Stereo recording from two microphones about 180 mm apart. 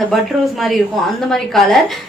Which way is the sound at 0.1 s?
Centre (ahead or behind).